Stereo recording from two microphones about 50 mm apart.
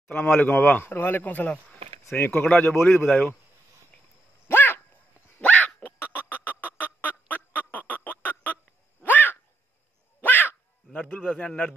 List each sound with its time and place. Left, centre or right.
0.4 s a man's voice: left
1.2 s speech: left
2.1 s speech: left
2.7 s a man's voice: left
3.1 s speech: left
4.5 s a sound: left
5.4 s dog: left
5.9 s fowl: left
9.0 s a sound: left
10.2 s crow: left
11.3 s a man's voice: left